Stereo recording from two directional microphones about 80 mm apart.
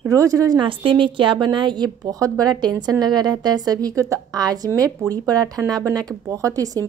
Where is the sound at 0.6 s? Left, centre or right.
Right.